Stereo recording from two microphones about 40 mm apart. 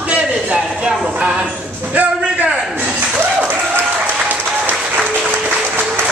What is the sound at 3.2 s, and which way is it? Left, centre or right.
Applause, right.